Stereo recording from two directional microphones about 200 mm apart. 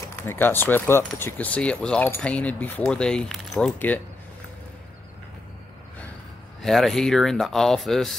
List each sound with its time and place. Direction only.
0.1 s speech: 10° left (ahead or behind)
6.6 s speech: centre (ahead or behind)